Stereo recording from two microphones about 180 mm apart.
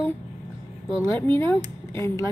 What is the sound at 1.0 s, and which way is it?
Speech, 15° left (ahead or behind).